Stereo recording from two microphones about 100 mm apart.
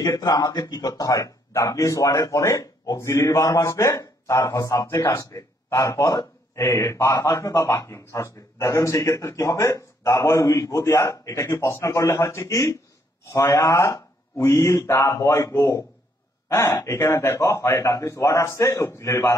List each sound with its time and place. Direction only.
0.0 s a man's voice: 35° left (ahead or behind)